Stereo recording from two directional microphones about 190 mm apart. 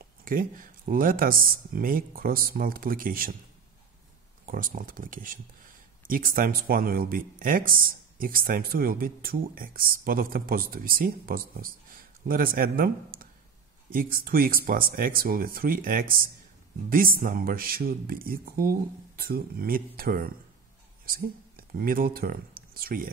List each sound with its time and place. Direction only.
0.2 s speech: 45° right (ahead or behind)
4.5 s speech: 45° right (ahead or behind)